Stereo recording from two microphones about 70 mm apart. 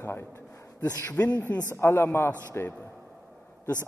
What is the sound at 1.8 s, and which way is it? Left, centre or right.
Speech, left.